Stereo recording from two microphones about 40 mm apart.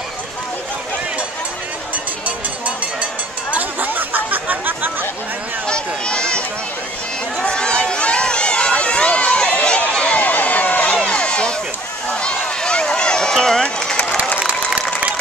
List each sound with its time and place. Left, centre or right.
2.2 s a sound: right
3.5 s chatter: right
5.7 s run: left
7.4 s run: left
10.9 s crowd: left
12.2 s run: left